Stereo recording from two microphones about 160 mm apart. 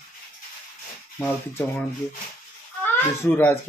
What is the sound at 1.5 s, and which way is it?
Speech, 10° left (ahead or behind).